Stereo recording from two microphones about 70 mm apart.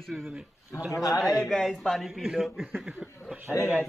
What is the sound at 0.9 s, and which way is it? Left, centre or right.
Speech, left.